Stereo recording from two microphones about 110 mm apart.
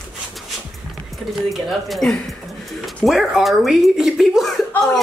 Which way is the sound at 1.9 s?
Centre (ahead or behind).